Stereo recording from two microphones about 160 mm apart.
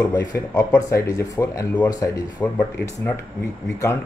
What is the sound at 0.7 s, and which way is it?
Speech, 20° left (ahead or behind).